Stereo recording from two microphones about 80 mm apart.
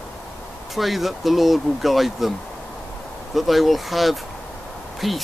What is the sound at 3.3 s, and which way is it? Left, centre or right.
Speech, centre.